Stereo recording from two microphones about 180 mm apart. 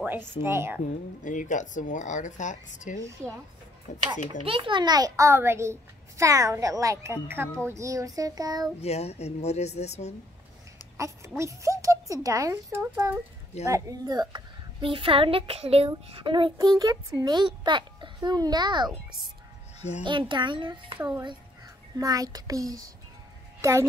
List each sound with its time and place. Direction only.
0.4 s a child's voice: 15° right (ahead or behind)
1.2 s speech: 45° left (ahead or behind)
3.0 s a child's voice: 15° right (ahead or behind)
4.5 s a child's voice: 30° right (ahead or behind)
8.8 s speech: 35° left (ahead or behind)
11.0 s a child's voice: 15° right (ahead or behind)
20.0 s a woman's voice: 25° right (ahead or behind)
22.0 s a woman's voice: 20° right (ahead or behind)